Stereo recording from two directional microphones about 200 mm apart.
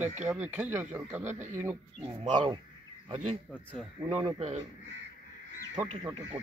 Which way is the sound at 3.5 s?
5° left (ahead or behind).